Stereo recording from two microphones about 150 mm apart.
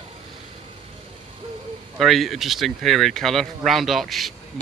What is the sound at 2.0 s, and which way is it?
Speech, centre (ahead or behind).